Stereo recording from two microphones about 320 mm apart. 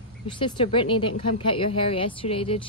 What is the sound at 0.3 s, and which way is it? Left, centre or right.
A woman's voice, centre.